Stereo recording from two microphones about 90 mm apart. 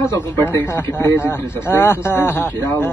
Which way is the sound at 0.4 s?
30° left (ahead or behind).